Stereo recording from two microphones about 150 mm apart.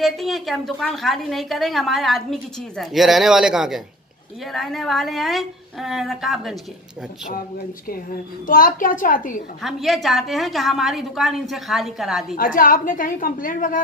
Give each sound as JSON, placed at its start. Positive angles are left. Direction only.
{"t": 0.0, "sound": "a woman's voice", "side_deg": 0}
{"t": 8.5, "sound": "a woman's voice", "side_deg": 65}
{"t": 9.6, "sound": "a woman's voice", "side_deg": 0}
{"t": 12.4, "sound": "a woman's voice", "side_deg": 70}